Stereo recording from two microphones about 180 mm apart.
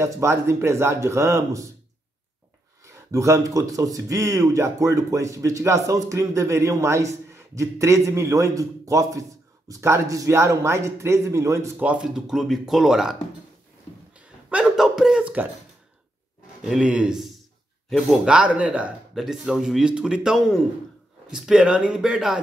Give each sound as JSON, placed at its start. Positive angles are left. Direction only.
{"t": 0.0, "sound": "speech", "side_deg": -15}
{"t": 2.8, "sound": "speech", "side_deg": -15}
{"t": 14.1, "sound": "a sound", "side_deg": -5}
{"t": 16.6, "sound": "speech", "side_deg": -5}